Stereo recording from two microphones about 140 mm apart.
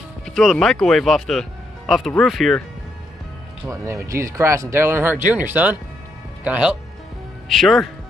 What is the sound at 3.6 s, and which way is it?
Speech, 20° right (ahead or behind).